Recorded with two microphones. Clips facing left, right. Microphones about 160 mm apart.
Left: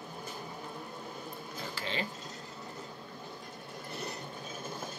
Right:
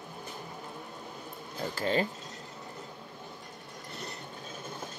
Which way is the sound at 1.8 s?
45° right (ahead or behind).